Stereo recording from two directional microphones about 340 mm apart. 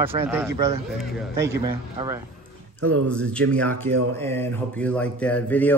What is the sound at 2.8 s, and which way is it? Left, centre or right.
Speech, right.